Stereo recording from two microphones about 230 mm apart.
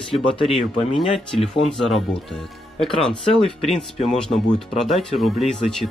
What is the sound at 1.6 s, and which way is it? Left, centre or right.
Speech, centre.